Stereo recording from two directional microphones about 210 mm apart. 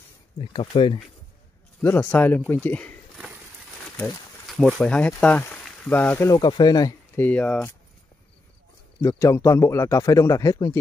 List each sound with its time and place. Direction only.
0.4 s speech: 25° left (ahead or behind)
1.8 s speech: 10° left (ahead or behind)
7.2 s a man's voice: 5° left (ahead or behind)
9.0 s a man's voice: 15° left (ahead or behind)